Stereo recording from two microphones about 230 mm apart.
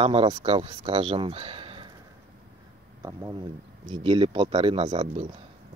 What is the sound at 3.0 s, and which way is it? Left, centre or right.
Speech, centre.